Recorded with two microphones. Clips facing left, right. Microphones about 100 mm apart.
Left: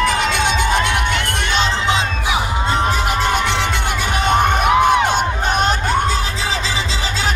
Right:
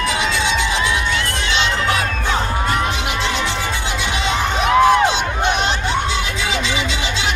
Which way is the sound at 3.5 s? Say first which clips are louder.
Left 3 dB; 60° left (ahead or behind).